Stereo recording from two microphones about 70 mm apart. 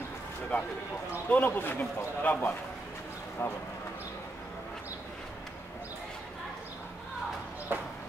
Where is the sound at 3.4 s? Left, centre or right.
Left.